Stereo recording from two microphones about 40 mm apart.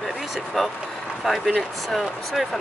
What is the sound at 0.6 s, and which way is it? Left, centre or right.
Speech, centre.